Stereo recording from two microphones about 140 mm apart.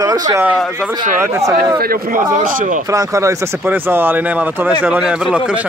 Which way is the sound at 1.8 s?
85° right.